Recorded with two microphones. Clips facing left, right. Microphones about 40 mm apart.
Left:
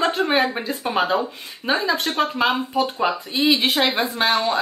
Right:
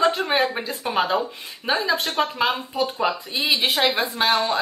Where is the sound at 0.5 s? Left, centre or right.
Centre.